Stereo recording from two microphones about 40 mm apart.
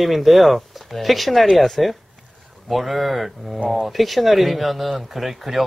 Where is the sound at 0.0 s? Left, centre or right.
Centre.